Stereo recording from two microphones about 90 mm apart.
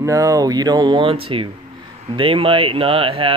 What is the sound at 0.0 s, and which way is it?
Speech, 35° right (ahead or behind).